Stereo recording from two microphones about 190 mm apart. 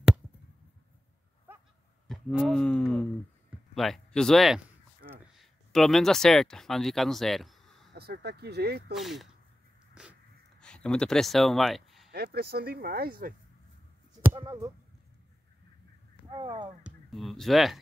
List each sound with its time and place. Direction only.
2.0 s speech: centre (ahead or behind)
7.9 s speech: 60° right (ahead or behind)
8.9 s speech: centre (ahead or behind)
10.0 s a sound: 5° right (ahead or behind)
10.6 s speech: 5° left (ahead or behind)
12.1 s speech: 55° right (ahead or behind)
14.3 s speech: 15° right (ahead or behind)
16.3 s speech: 25° right (ahead or behind)
16.8 s speech: centre (ahead or behind)